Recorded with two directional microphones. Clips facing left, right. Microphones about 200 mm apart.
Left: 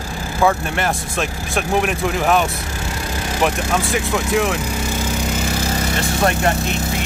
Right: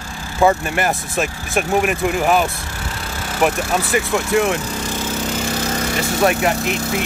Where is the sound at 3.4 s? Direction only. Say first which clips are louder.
Right 1 dB; centre (ahead or behind).